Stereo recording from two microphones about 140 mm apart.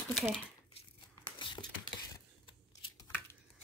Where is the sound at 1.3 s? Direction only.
35° left (ahead or behind).